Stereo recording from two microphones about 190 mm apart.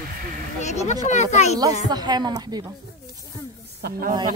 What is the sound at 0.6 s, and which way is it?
Speech, 35° left (ahead or behind).